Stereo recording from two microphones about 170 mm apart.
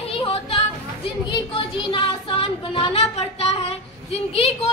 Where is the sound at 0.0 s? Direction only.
35° left (ahead or behind).